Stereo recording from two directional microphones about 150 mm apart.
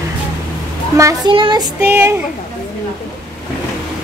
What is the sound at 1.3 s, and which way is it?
Child singing, 35° right (ahead or behind).